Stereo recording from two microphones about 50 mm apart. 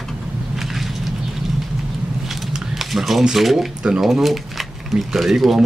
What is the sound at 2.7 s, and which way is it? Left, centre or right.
Speech, centre.